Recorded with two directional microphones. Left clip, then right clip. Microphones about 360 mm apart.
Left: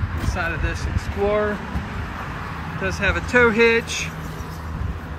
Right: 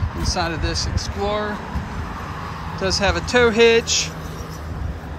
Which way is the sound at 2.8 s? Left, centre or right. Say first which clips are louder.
Right 2 dB; centre.